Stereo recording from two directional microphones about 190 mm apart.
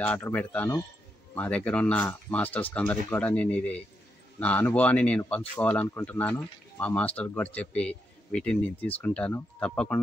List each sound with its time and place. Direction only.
0.0 s speech: 10° left (ahead or behind)